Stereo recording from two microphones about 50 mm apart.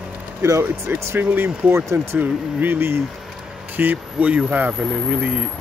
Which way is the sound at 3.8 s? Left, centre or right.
Right.